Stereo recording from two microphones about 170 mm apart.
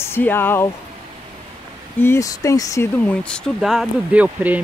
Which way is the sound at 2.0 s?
20° left (ahead or behind).